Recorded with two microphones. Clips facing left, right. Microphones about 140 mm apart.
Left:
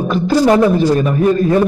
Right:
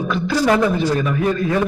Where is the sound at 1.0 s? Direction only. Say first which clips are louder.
Left 6 dB; 45° left (ahead or behind).